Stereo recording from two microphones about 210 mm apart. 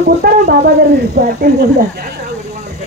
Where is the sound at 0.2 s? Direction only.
50° right (ahead or behind).